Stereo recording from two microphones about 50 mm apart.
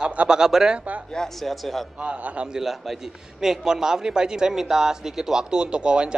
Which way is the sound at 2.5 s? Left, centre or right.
Centre.